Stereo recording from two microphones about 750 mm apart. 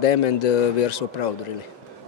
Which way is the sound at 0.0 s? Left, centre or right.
Left.